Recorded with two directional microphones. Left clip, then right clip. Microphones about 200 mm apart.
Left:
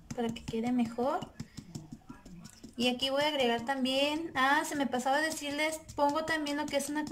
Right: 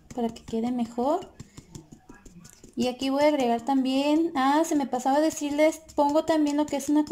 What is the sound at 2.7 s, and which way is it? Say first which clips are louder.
A woman's voice: right 3 dB; 20° right (ahead or behind).